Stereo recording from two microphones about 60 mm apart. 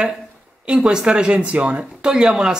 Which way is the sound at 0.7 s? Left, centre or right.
Centre.